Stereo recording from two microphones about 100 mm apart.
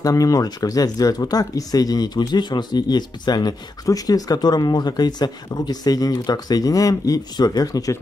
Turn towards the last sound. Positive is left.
turn(degrees=40)  # may be behind; listen again after turning